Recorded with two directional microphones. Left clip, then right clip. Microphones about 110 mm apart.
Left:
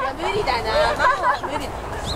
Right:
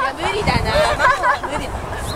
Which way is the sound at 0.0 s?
35° right (ahead or behind).